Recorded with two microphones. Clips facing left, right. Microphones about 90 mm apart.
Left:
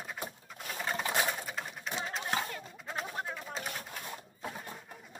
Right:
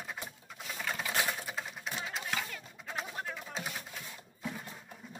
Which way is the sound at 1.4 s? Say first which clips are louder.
Even; centre (ahead or behind).